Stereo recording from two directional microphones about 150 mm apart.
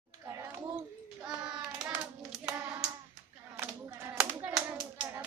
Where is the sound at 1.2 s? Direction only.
5° right (ahead or behind).